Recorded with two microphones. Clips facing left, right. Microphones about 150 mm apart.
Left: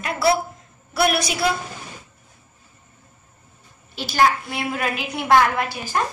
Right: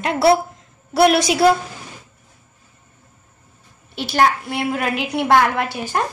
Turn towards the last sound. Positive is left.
turn(degrees=-65)  # may be behind; listen again after turning